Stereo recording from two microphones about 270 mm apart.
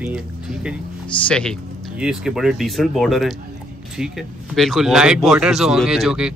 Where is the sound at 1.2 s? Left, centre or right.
Centre.